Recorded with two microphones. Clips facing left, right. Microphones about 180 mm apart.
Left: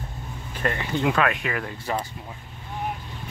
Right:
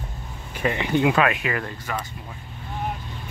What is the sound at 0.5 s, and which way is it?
A man's voice, 10° right (ahead or behind).